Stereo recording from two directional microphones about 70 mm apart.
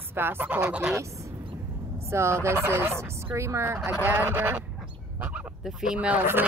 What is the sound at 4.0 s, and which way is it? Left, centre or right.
Goose, right.